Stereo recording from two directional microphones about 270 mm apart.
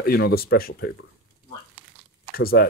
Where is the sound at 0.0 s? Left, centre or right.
Left.